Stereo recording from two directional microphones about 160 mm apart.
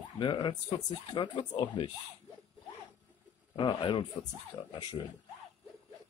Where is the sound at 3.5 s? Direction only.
30° left (ahead or behind).